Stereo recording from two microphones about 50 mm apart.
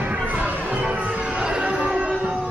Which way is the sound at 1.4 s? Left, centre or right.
Centre.